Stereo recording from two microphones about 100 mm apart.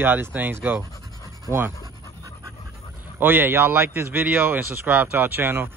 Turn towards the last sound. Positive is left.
turn(degrees=-20)  # may be behind; listen again after turning